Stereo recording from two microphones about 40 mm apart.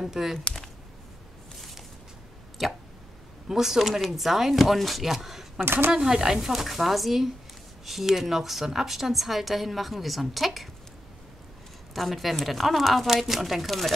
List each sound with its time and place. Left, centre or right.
0.0 s speech: centre
1.6 s a sound: centre
2.6 s a woman's voice: centre
5.6 s speech: right
5.9 s a woman's voice: centre
11.9 s a woman's voice: centre